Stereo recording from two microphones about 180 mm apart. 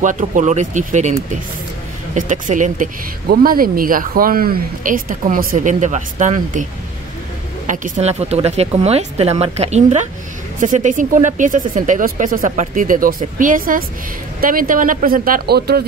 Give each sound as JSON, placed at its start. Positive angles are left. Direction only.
{"t": 0.0, "sound": "speech", "side_deg": -45}
{"t": 2.1, "sound": "speech", "side_deg": -45}
{"t": 7.6, "sound": "speech", "side_deg": -45}